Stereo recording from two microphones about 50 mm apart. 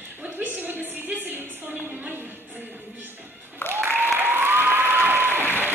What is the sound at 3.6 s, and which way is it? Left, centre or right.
Applause, left.